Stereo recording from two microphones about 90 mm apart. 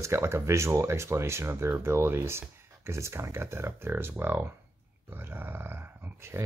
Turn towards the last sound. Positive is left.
turn(degrees=-25)  # may be behind; listen again after turning